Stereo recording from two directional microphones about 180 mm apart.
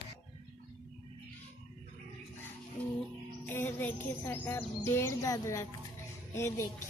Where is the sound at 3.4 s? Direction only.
10° left (ahead or behind).